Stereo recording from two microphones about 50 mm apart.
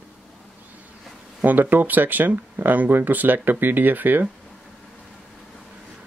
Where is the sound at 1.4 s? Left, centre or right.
Right.